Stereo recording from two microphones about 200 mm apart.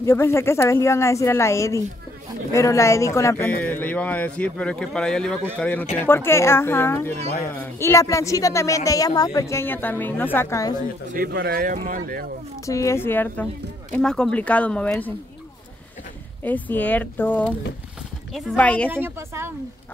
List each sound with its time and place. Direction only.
0.0 s speech: 15° left (ahead or behind)
11.1 s speech: 55° right (ahead or behind)
12.6 s speech: 15° left (ahead or behind)
16.4 s speech: 10° left (ahead or behind)
18.9 s a woman's voice: 10° right (ahead or behind)